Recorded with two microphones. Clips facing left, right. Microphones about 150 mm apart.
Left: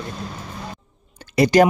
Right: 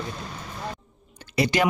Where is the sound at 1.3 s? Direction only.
45° left (ahead or behind).